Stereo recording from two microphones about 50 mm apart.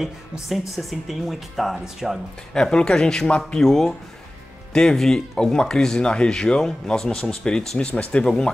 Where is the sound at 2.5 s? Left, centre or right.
Centre.